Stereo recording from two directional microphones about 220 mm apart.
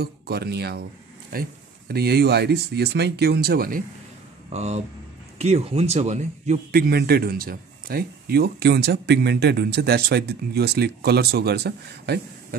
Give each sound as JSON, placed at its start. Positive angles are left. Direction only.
{"t": 0.0, "sound": "a man's voice", "side_deg": -45}
{"t": 4.5, "sound": "a man's voice", "side_deg": -30}